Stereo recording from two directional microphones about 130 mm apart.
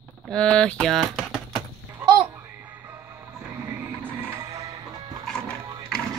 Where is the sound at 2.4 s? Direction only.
15° right (ahead or behind).